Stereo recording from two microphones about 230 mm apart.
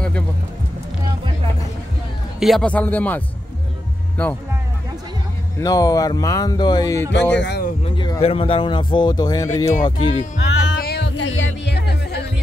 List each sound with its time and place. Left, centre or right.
2.4 s speech: centre
4.2 s speech: centre
5.6 s speech: centre
7.1 s speech: left
7.8 s speech: left
10.3 s music: left